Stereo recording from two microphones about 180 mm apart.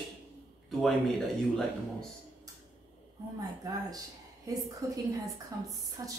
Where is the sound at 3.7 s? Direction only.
20° right (ahead or behind).